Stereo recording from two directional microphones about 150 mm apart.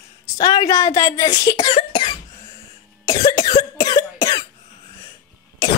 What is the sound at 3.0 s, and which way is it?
Cough, 25° left (ahead or behind).